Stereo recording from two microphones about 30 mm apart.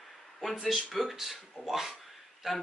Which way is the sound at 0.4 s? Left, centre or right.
Centre.